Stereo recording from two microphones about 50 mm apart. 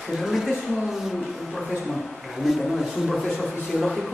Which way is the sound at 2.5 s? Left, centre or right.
Centre.